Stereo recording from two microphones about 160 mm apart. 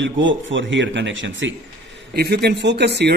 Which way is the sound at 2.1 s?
90° right.